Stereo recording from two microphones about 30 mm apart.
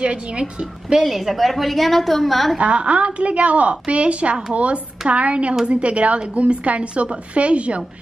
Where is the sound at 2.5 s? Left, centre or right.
Right.